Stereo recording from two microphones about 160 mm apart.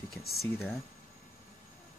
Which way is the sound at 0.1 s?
Centre (ahead or behind).